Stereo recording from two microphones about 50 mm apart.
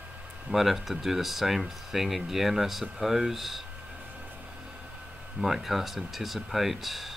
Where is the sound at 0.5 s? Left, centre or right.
Centre.